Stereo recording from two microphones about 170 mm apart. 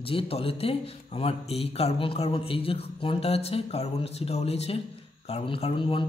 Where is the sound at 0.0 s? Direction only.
35° left (ahead or behind).